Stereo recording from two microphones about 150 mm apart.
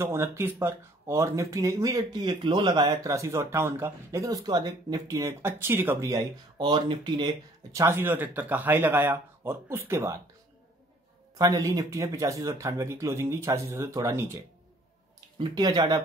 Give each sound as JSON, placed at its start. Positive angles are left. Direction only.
{"t": 0.0, "sound": "speech", "side_deg": -15}
{"t": 7.8, "sound": "speech", "side_deg": -15}
{"t": 11.3, "sound": "speech", "side_deg": -25}
{"t": 15.1, "sound": "speech", "side_deg": -30}